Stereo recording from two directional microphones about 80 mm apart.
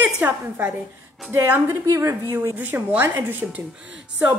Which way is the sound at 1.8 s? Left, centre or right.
Right.